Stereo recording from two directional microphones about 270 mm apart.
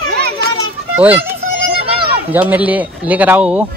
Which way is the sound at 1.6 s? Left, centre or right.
Centre.